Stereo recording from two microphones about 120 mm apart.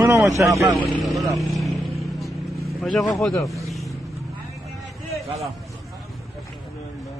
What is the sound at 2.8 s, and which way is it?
Speech, centre (ahead or behind).